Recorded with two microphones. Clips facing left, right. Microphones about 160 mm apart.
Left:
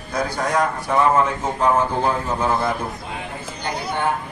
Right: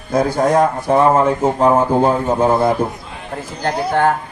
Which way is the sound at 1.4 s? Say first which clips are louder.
Right 6 dB; 30° right (ahead or behind).